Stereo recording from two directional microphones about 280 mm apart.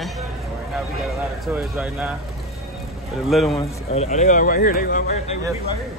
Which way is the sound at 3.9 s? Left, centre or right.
Left.